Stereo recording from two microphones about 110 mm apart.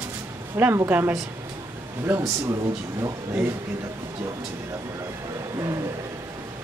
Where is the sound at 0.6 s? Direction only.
20° right (ahead or behind).